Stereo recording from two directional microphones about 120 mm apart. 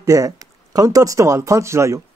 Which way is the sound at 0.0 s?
30° right (ahead or behind).